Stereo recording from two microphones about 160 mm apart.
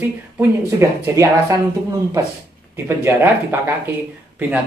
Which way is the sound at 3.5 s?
15° right (ahead or behind).